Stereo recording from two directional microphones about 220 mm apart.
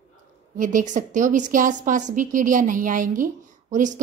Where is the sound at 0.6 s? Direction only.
35° right (ahead or behind).